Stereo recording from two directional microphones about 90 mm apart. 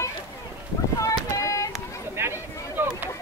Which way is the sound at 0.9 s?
40° left (ahead or behind).